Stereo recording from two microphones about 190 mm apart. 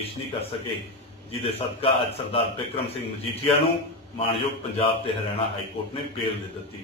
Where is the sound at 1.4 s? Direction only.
30° left (ahead or behind).